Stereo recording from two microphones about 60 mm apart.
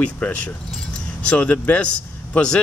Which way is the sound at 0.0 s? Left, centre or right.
Left.